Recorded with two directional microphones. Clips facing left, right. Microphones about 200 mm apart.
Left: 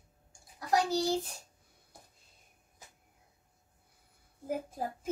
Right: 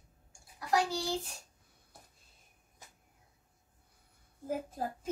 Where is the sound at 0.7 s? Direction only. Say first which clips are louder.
Left 3 dB; 40° left (ahead or behind).